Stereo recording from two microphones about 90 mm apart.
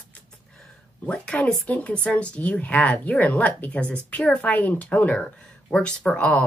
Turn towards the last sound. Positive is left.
turn(degrees=15)  # may be behind; listen again after turning